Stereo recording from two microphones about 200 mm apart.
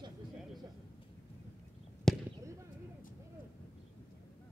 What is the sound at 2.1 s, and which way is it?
Fireworks, 5° left (ahead or behind).